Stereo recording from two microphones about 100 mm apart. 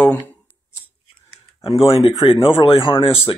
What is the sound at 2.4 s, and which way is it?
Speech, 60° left (ahead or behind).